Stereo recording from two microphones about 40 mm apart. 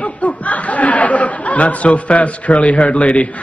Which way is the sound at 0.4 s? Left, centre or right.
Left.